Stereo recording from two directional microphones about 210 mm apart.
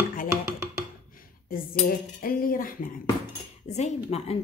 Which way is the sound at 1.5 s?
45° left (ahead or behind).